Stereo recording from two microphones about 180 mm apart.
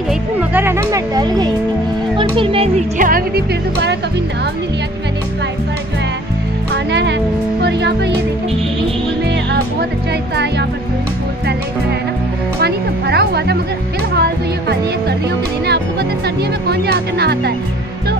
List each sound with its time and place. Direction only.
0.5 s speech: 10° right (ahead or behind)
2.1 s music: 30° right (ahead or behind)
3.0 s speech: 55° right (ahead or behind)
6.7 s music: 75° right (ahead or behind)
12.5 s music: 65° right (ahead or behind)
16.6 s speech: 60° right (ahead or behind)